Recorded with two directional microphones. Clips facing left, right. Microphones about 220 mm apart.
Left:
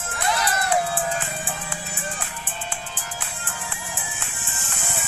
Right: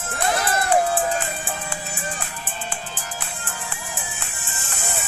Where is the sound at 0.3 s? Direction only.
50° right (ahead or behind).